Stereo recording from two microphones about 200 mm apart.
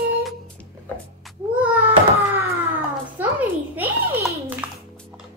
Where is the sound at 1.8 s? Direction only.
30° right (ahead or behind).